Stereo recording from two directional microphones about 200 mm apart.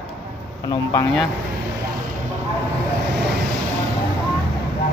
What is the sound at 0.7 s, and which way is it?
Speech, 15° left (ahead or behind).